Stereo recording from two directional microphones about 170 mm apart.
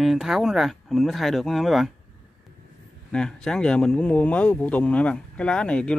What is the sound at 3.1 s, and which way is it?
Speech, 5° left (ahead or behind).